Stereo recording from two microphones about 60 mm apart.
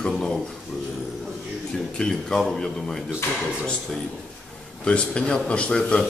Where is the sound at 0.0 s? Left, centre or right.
Centre.